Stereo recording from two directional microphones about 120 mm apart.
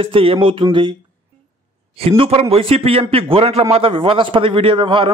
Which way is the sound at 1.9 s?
50° right (ahead or behind).